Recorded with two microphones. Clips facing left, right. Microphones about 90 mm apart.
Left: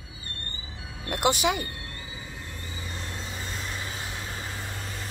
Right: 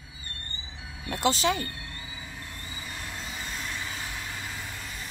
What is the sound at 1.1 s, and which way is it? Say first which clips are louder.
Speech: left 1 dB; 15° left (ahead or behind).